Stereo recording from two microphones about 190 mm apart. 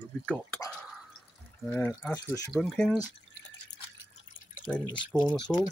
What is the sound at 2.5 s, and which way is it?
Speech, centre (ahead or behind).